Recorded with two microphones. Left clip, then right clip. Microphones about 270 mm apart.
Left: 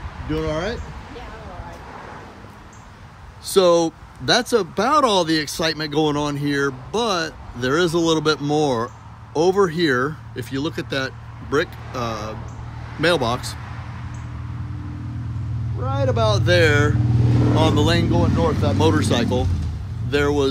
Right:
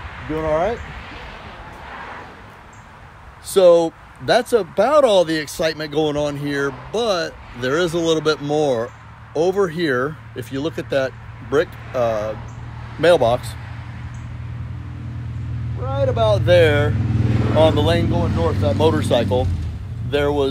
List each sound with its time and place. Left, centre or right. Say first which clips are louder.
3.4 s speech: right 3 dB; centre
15.8 s speech: right 2 dB; centre
17.3 s vehicle: left 2 dB; left
17.6 s speech: right 5 dB; centre